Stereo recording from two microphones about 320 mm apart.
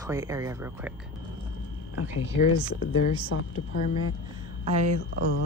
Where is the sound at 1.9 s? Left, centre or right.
Left.